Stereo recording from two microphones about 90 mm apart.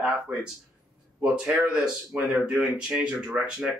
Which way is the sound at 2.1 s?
15° right (ahead or behind).